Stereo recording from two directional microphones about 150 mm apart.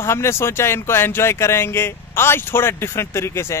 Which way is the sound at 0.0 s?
15° left (ahead or behind).